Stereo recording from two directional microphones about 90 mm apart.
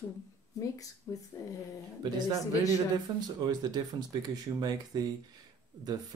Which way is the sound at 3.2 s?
45° right (ahead or behind).